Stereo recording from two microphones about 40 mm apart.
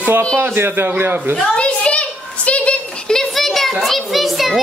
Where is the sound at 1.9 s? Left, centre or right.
Left.